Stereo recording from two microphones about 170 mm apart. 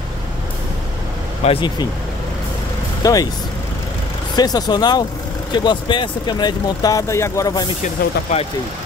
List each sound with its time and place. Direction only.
1.4 s speech: 30° left (ahead or behind)
3.0 s speech: 20° left (ahead or behind)
4.4 s speech: 25° left (ahead or behind)
7.8 s speech: 40° left (ahead or behind)